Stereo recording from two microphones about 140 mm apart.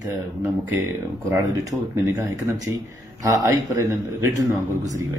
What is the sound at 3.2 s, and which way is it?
Speech, 25° right (ahead or behind).